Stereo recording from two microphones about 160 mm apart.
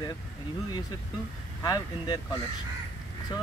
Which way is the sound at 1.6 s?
25° left (ahead or behind).